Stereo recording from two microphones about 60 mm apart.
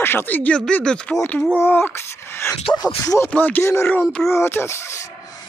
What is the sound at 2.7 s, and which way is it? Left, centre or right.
Speech, left.